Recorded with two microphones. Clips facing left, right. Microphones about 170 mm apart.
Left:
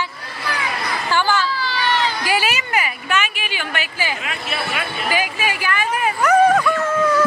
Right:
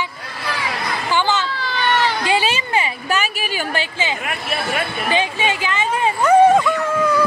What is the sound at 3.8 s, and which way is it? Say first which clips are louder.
Speech: right 2 dB; 20° right (ahead or behind).